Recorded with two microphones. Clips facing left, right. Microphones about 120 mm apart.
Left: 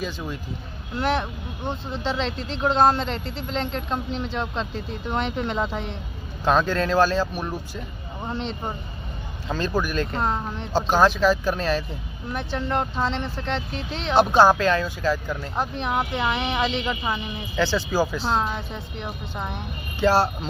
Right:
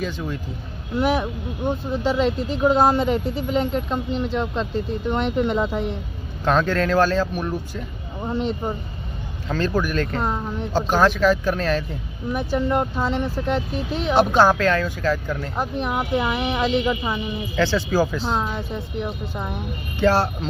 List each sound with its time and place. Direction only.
0.0 s speech: 15° left (ahead or behind)
0.9 s speech: 10° right (ahead or behind)
6.4 s speech: 15° left (ahead or behind)
8.2 s speech: 5° right (ahead or behind)
9.5 s speech: 15° left (ahead or behind)
10.2 s speech: centre (ahead or behind)
10.9 s speech: 20° left (ahead or behind)
12.3 s speech: 5° right (ahead or behind)
14.3 s speech: 15° left (ahead or behind)
15.5 s speech: 5° right (ahead or behind)
17.6 s speech: 15° left (ahead or behind); by 19.6 s centre (ahead or behind)
20.0 s speech: 10° left (ahead or behind)